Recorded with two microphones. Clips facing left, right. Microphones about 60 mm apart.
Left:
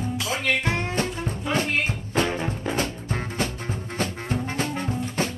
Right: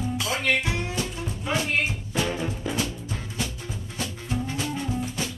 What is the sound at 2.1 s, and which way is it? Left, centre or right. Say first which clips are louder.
Music: left 3 dB; left.